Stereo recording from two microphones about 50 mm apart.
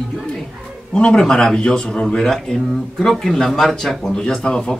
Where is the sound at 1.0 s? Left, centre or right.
Centre.